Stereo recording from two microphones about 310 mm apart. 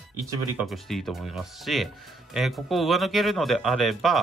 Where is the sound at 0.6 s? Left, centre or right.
Centre.